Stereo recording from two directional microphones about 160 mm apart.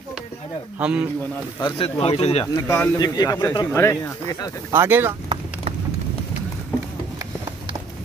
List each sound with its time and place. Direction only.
0.7 s speech: 10° right (ahead or behind)
1.6 s speech: 35° left (ahead or behind)
2.4 s speech: 20° left (ahead or behind)
4.7 s speech: 15° right (ahead or behind)